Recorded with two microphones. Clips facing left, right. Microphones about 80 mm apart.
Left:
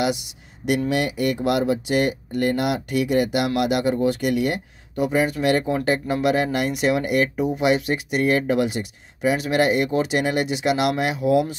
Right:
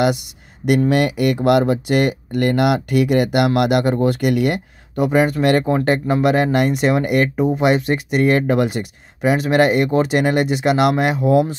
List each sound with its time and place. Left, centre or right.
0.0 s speech: right